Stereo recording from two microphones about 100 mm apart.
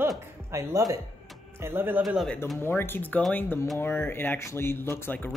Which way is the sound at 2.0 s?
Centre (ahead or behind).